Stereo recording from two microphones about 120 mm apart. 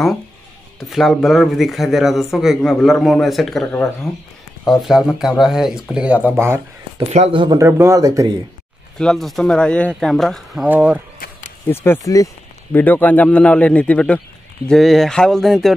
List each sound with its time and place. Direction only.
0.7 s a man's voice: centre (ahead or behind)
4.6 s a man's voice: centre (ahead or behind); by 6.6 s 20° right (ahead or behind)
7.1 s speech: 65° right (ahead or behind)
7.5 s speech: 20° right (ahead or behind)
8.9 s a man's voice: 5° left (ahead or behind)
11.6 s speech: 20° left (ahead or behind)
12.7 s a man's voice: 15° left (ahead or behind)